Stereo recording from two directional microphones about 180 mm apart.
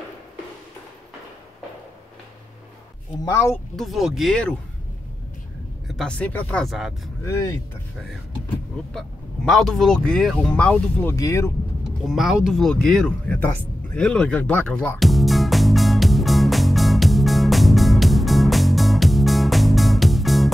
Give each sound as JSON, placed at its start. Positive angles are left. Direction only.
{"t": 3.3, "sound": "speech", "side_deg": 15}
{"t": 3.7, "sound": "speech", "side_deg": 0}
{"t": 5.9, "sound": "speech", "side_deg": 5}
{"t": 8.9, "sound": "speech", "side_deg": 0}
{"t": 11.8, "sound": "speech", "side_deg": 0}
{"t": 13.9, "sound": "music", "side_deg": 5}